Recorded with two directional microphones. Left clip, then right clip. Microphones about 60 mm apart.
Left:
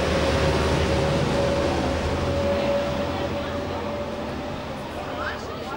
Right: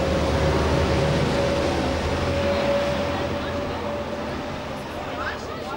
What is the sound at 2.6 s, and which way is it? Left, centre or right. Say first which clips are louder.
Vehicle: right 2 dB; right.